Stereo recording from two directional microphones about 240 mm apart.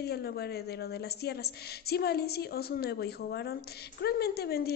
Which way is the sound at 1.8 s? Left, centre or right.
Left.